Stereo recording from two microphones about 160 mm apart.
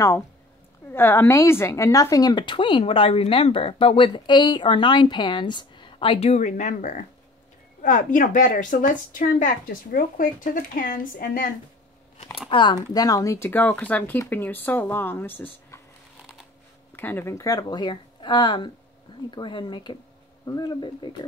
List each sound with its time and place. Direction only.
0.9 s a woman's voice: 15° left (ahead or behind); by 11.5 s 60° left (ahead or behind)
12.4 s speech: 30° left (ahead or behind); by 15.8 s 15° left (ahead or behind)
16.9 s speech: 15° left (ahead or behind); by 21.3 s 30° left (ahead or behind)